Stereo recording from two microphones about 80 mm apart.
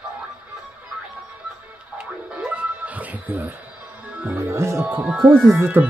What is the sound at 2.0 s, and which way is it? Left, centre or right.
Music, centre.